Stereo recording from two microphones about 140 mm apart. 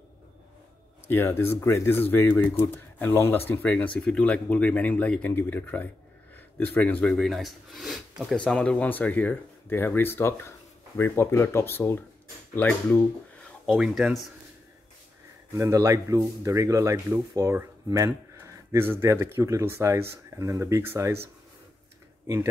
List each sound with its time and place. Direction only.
1.0 s speech: 15° left (ahead or behind)
13.7 s speech: centre (ahead or behind)
15.5 s speech: 25° right (ahead or behind)